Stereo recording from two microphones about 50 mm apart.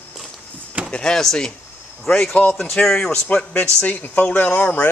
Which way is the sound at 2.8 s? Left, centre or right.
Centre.